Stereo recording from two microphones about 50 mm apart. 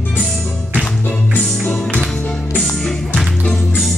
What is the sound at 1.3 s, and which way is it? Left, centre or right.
Music, left.